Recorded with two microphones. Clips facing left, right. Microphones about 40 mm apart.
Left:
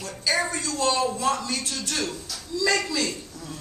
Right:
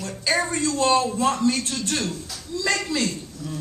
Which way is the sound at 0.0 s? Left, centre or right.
Right.